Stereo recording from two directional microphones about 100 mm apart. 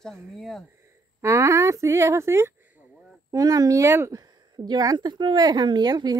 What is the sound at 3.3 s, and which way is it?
Speech, 40° right (ahead or behind).